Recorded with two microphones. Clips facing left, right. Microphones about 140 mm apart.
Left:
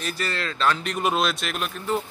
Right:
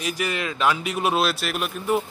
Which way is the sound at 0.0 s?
15° right (ahead or behind).